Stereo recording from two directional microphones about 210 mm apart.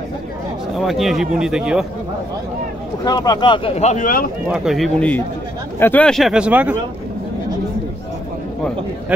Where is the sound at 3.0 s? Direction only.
20° left (ahead or behind); by 4.2 s 40° left (ahead or behind).